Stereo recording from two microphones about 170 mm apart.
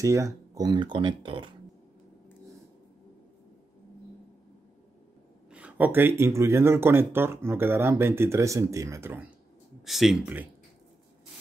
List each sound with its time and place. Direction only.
0.0 s speech: 20° right (ahead or behind)
5.5 s speech: 10° right (ahead or behind)
9.8 s speech: centre (ahead or behind)